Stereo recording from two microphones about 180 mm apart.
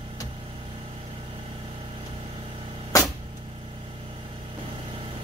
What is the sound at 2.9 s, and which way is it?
Vehicle, 20° left (ahead or behind).